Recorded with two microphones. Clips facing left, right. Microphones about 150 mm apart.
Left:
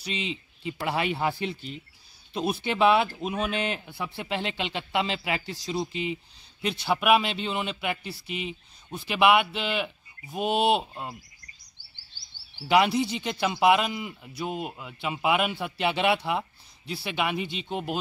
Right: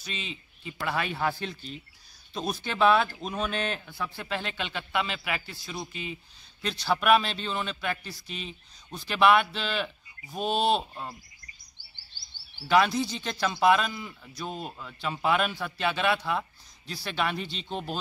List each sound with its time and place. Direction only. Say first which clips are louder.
0.0 s a man's voice: left 6 dB; 20° left (ahead or behind)
2.6 s a man's voice: left 1 dB; 15° left (ahead or behind)
12.6 s speech: left 1 dB; 15° left (ahead or behind)